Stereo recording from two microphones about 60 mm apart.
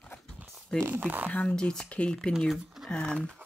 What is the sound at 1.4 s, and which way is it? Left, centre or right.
Speech, centre.